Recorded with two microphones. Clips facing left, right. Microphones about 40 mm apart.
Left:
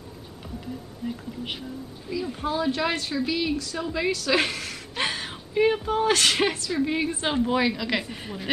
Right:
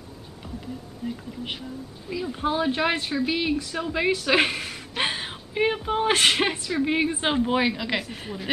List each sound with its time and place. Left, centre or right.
2.1 s a woman's voice: right
8.0 s speech: centre